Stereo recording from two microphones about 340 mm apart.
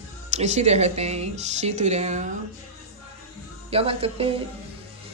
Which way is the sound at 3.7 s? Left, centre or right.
Centre.